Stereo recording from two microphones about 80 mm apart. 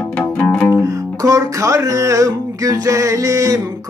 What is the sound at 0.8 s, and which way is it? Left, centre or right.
Music, right.